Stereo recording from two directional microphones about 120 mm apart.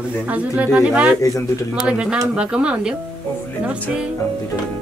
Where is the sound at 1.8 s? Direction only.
10° right (ahead or behind).